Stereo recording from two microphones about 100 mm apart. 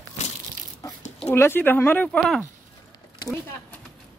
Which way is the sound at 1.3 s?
25° left (ahead or behind).